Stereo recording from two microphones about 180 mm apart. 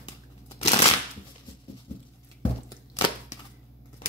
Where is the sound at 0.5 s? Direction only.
35° left (ahead or behind).